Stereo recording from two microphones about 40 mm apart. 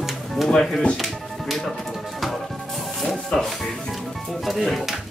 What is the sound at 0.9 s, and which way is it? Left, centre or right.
Music, centre.